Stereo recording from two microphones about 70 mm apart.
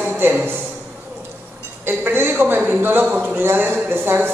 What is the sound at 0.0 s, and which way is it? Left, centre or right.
Speech, right.